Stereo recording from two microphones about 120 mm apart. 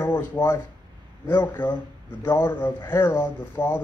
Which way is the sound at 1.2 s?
15° left (ahead or behind).